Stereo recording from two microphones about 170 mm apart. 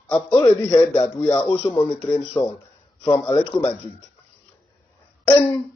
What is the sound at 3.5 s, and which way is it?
Speech, 10° left (ahead or behind).